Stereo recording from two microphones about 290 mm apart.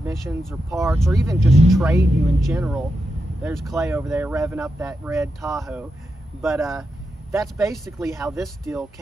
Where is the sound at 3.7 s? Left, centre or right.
Centre.